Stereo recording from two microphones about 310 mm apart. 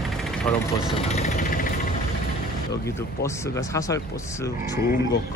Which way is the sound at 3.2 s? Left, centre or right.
Centre.